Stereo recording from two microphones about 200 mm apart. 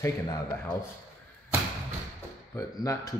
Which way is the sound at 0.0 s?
20° left (ahead or behind).